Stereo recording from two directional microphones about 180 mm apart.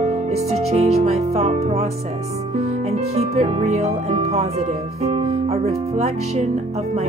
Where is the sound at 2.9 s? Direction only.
35° right (ahead or behind).